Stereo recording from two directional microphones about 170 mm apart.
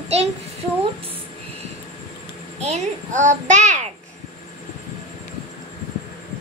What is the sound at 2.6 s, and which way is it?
A child's voice, 45° right (ahead or behind).